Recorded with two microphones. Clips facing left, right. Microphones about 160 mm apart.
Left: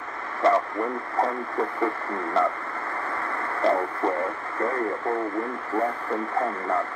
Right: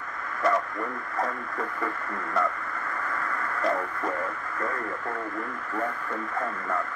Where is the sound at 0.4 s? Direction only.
30° left (ahead or behind).